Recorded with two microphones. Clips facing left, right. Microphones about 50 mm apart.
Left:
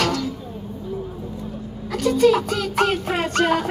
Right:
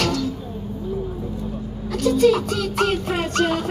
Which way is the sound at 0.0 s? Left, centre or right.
Left.